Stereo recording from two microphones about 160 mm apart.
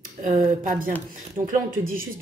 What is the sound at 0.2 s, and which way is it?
A woman's voice, 55° right (ahead or behind).